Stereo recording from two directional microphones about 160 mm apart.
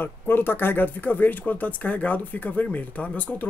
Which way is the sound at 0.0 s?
10° left (ahead or behind).